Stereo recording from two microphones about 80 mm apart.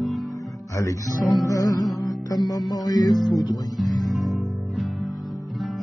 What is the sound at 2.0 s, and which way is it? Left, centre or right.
Music, left.